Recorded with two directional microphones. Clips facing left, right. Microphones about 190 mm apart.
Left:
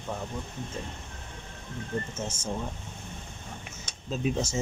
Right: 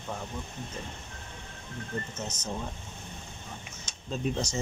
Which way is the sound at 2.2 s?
30° left (ahead or behind).